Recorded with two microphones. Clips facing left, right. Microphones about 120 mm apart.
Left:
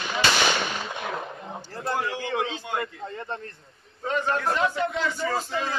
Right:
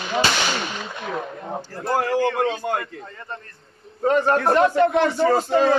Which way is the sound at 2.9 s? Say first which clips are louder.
Left 2 dB; 25° left (ahead or behind).